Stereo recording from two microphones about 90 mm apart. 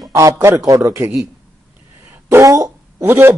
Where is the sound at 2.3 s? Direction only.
35° right (ahead or behind).